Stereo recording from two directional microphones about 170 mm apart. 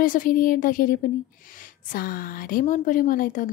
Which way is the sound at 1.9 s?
55° left (ahead or behind).